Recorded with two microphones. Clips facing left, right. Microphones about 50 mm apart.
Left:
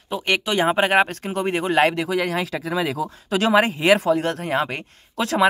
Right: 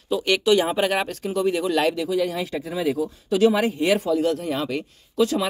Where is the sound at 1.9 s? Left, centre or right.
Left.